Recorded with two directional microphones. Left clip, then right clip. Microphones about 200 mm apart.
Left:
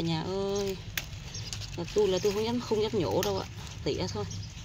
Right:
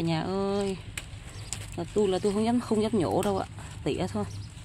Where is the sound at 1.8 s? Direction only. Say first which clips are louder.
Even; 30° right (ahead or behind).